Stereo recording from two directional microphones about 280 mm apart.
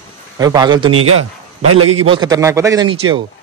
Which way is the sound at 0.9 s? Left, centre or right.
Right.